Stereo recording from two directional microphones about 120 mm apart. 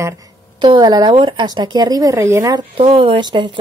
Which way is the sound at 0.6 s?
40° right (ahead or behind).